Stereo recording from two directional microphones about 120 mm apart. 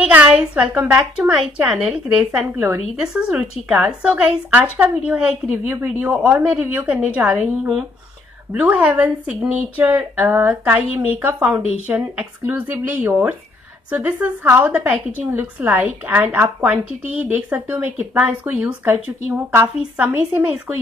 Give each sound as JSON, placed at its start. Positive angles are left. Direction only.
{"t": 0.0, "sound": "a woman's voice", "side_deg": -10}